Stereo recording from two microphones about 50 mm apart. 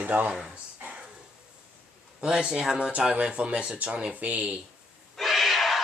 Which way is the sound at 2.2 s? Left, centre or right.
Centre.